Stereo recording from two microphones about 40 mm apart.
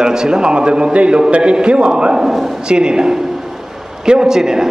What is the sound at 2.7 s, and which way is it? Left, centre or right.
A man's voice, right.